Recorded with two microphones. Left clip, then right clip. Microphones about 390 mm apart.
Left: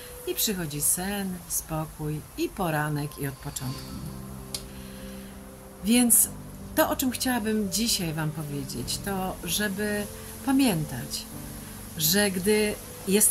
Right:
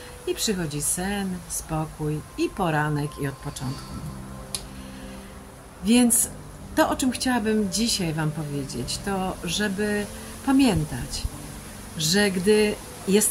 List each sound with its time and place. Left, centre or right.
0.3 s a woman's voice: left
5.9 s a woman's voice: left